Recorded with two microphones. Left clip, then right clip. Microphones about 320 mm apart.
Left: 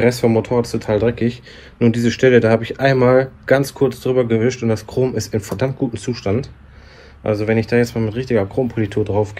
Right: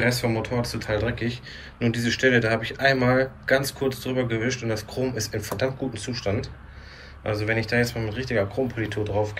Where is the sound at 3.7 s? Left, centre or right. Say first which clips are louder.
Left 10 dB; centre.